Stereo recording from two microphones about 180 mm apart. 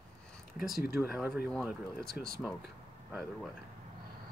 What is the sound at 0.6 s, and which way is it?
Speech, centre (ahead or behind).